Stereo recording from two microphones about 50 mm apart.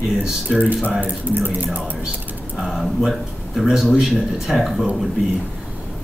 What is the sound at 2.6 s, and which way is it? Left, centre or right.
Speech, centre.